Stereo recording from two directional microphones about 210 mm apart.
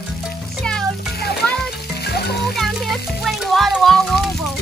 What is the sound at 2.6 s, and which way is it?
Music, centre (ahead or behind).